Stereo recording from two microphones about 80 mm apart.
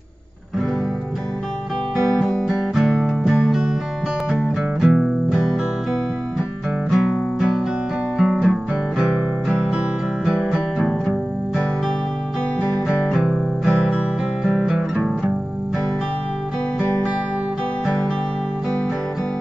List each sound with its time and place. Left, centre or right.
2.0 s music: centre
6.9 s music: centre
8.2 s guitar: centre
10.2 s music: centre
12.8 s music: centre